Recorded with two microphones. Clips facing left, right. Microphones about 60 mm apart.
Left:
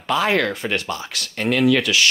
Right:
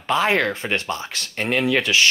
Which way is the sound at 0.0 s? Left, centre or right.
Right.